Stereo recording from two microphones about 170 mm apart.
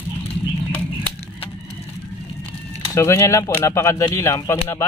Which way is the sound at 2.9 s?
15° left (ahead or behind).